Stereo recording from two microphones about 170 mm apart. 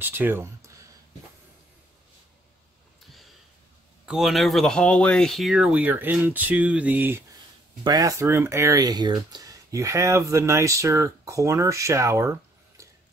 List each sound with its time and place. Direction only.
0.0 s speech: 10° right (ahead or behind)
4.0 s speech: 5° right (ahead or behind); by 12.9 s 20° right (ahead or behind)